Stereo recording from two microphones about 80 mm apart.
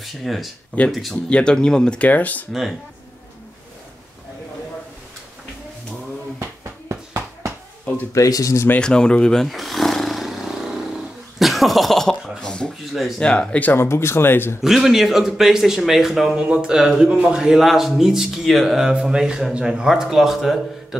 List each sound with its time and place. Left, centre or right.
0.0 s speech: centre
1.1 s speech: centre
6.6 s bouncing: right
8.1 s speech: left
8.6 s roar: centre
11.3 s cough: centre
12.4 s speech: centre
13.8 s speech: left
14.6 s a man's voice: centre